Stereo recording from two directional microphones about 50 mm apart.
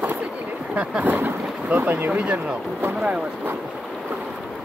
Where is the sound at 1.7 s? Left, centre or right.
Right.